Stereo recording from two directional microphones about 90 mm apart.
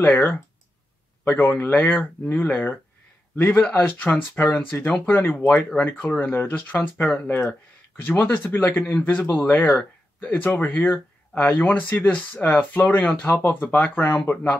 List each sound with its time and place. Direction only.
0.0 s speech: 20° left (ahead or behind)